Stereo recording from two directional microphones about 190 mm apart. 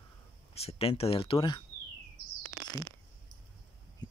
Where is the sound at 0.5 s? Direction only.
30° left (ahead or behind).